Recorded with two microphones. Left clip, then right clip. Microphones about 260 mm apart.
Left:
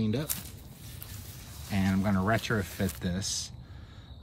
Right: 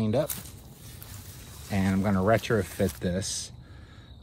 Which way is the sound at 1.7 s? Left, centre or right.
Centre.